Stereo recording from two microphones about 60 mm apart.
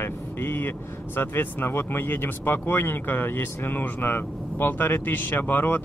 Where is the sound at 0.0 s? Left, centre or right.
Left.